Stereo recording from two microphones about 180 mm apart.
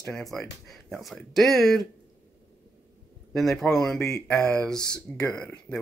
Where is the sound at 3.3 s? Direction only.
Centre (ahead or behind).